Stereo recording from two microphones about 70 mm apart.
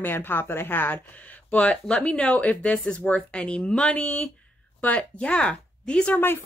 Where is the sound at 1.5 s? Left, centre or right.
Centre.